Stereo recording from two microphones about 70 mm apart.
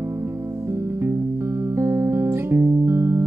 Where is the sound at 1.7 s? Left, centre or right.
Right.